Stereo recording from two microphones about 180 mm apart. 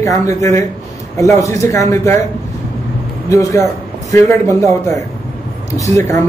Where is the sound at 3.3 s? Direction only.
20° left (ahead or behind).